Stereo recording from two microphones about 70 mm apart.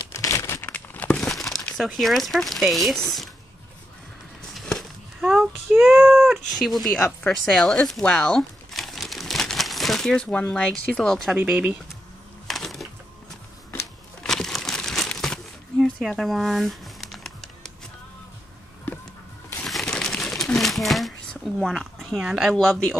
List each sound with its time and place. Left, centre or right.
0.1 s crumpling: left
0.6 s crumpling: left
1.3 s crumpling: centre
1.8 s speech: centre
4.6 s a sound: centre
6.1 s speech: centre
7.1 s a sound: centre
10.2 s speech: centre
12.4 s music: centre
14.2 s crumpling: centre
16.1 s music: centre
19.6 s crumpling: centre